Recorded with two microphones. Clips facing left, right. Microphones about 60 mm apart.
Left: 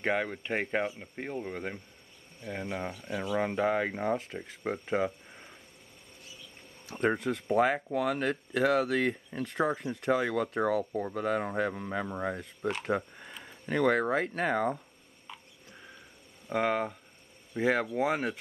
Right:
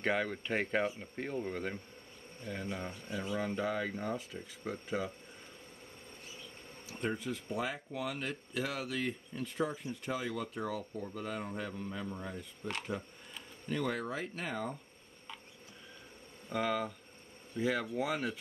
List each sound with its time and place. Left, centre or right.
0.0 s speech: centre
3.3 s speech: left
6.9 s speech: left
16.5 s speech: left